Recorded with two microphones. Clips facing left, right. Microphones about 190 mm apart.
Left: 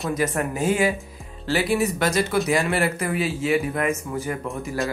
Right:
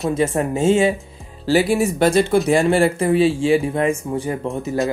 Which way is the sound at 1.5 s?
35° right (ahead or behind).